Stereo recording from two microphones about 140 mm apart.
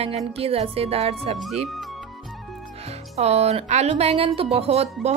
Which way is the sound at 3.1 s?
50° right (ahead or behind).